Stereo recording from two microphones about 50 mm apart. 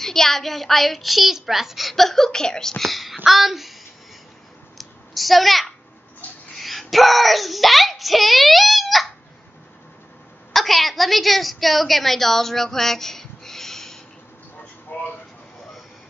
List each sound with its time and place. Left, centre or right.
0.0 s a child's voice: centre
2.8 s a child's voice: centre
4.7 s a sound: centre
6.5 s a child's voice: centre
10.5 s a woman's voice: centre
14.9 s a sound: left